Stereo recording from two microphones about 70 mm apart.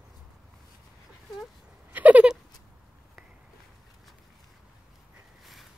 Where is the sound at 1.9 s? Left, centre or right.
Right.